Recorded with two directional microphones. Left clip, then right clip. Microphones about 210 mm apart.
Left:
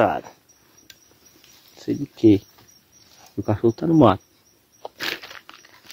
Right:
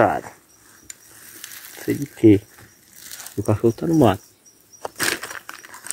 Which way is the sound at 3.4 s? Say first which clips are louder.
Right 1 dB; 15° left (ahead or behind).